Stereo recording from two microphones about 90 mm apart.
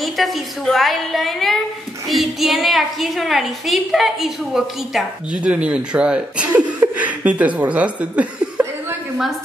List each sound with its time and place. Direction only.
0.0 s a woman's voice: centre (ahead or behind); by 8.9 s 15° right (ahead or behind)